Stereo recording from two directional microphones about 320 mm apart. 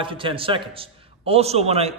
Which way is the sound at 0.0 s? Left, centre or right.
Centre.